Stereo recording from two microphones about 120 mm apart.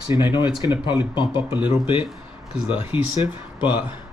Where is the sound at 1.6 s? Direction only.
15° right (ahead or behind).